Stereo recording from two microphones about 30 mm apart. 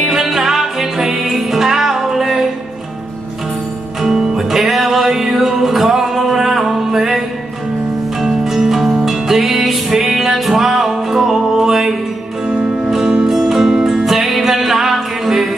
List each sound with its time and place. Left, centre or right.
0.0 s music: centre
4.0 s music: centre
12.4 s music: right
12.9 s music: centre